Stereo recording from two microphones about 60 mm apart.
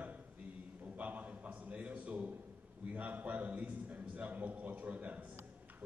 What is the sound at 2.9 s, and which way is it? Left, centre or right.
A man's voice, right.